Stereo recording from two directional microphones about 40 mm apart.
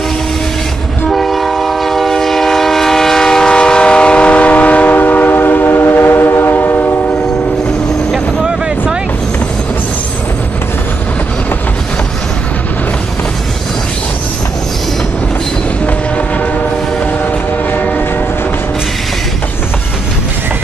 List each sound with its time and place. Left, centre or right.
1.1 s train: centre; by 4.9 s left
4.9 s train: left
6.5 s train: left